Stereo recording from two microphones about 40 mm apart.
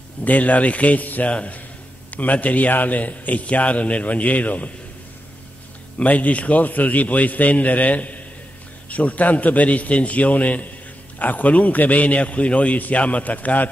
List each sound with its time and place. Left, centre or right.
0.2 s a man's voice: left
5.9 s a man's voice: left